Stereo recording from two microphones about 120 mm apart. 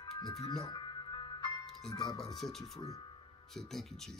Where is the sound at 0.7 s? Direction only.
40° left (ahead or behind).